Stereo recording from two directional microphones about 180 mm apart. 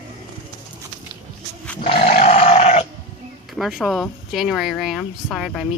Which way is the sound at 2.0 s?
35° left (ahead or behind).